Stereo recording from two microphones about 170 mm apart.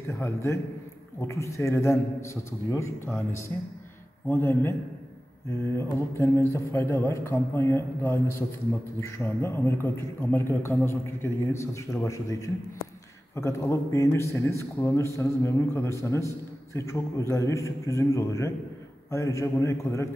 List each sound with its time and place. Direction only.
0.1 s a man's voice: 15° left (ahead or behind)